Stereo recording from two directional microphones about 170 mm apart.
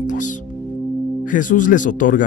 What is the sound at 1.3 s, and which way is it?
Speech, 50° left (ahead or behind).